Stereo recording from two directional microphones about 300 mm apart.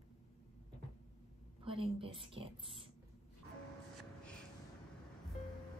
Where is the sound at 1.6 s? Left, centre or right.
Centre.